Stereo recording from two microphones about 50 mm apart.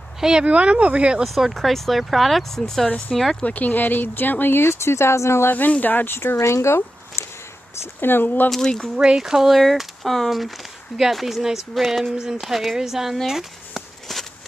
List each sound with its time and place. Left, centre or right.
0.2 s speech: centre
0.5 s speech: right
1.2 s speech: centre
3.5 s speech: left
4.6 s speech: left
5.5 s speech: left
6.0 s speech: left
6.4 s a sound: left
7.8 s speech: left
8.5 s speech: centre
8.9 s speech: centre
9.2 s speech: centre
13.3 s a sound: centre